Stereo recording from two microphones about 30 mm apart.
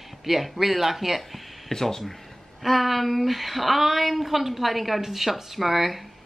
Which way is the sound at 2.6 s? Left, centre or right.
Centre.